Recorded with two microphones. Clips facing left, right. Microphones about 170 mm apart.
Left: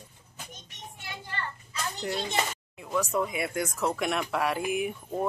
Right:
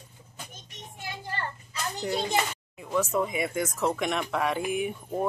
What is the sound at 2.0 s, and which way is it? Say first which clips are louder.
A child's voice: right 3 dB; centre (ahead or behind).